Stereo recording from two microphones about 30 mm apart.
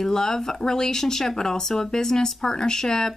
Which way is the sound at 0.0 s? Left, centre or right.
Centre.